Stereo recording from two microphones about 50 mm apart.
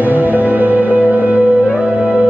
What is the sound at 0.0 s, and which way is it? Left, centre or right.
Music, right.